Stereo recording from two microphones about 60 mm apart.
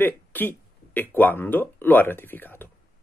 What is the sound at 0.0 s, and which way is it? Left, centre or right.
Speech, left.